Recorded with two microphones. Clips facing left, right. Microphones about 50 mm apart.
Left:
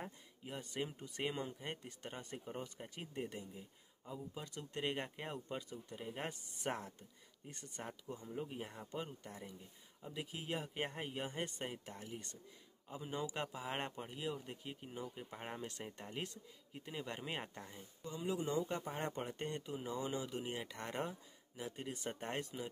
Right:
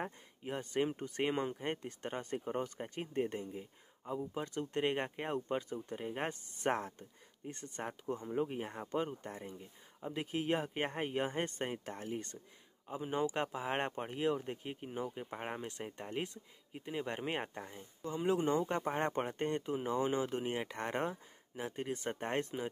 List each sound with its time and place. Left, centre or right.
0.0 s speech: right
5.5 s speech: right
5.9 s speech: right
6.5 s speech: right
8.8 s speech: right
12.8 s speech: right
18.2 s speech: right